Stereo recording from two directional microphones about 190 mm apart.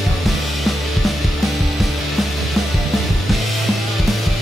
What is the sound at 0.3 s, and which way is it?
Music, centre (ahead or behind).